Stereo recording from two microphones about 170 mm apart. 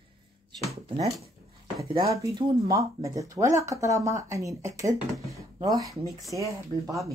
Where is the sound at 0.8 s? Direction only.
40° right (ahead or behind).